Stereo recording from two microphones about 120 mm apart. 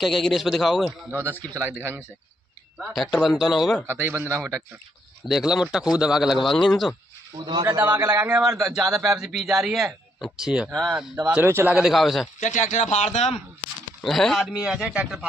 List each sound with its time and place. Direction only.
0.0 s a man's voice: centre (ahead or behind)
1.1 s speech: 20° right (ahead or behind)
3.0 s a man's voice: centre (ahead or behind)
3.8 s a man's voice: 20° right (ahead or behind)
5.3 s a man's voice: 5° right (ahead or behind)
7.3 s a man's voice: 35° right (ahead or behind)
7.8 s a man's voice: 20° right (ahead or behind)
8.4 s a man's voice: 5° right (ahead or behind)
11.2 s speech: 15° right (ahead or behind)
11.7 s a man's voice: 5° right (ahead or behind)
12.4 s speech: 90° left; by 13.4 s 70° left (ahead or behind)
14.0 s a man's voice: centre (ahead or behind)